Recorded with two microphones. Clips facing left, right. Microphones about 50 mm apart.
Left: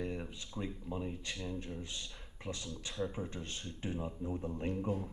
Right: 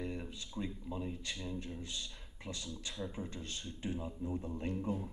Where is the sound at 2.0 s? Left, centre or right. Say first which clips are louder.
Left 1 dB; centre.